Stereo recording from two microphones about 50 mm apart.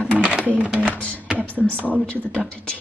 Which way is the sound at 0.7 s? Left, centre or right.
Right.